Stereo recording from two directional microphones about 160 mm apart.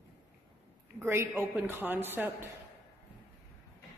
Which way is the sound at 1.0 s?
15° right (ahead or behind).